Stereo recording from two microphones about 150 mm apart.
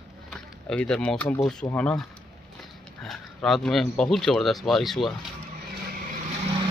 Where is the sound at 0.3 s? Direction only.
5° left (ahead or behind).